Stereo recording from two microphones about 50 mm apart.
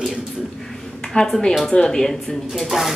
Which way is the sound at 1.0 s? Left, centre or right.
Centre.